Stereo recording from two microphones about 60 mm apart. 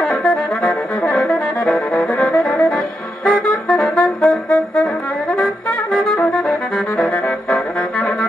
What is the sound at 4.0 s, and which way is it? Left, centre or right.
Brass instrument, centre.